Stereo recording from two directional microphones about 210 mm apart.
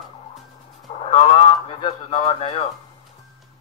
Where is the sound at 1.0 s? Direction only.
25° left (ahead or behind).